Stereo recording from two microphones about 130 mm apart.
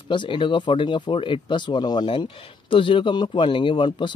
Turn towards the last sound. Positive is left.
turn(degrees=35)  # may be behind; listen again after turning